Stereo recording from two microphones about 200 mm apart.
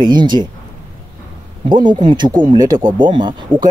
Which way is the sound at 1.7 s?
20° right (ahead or behind).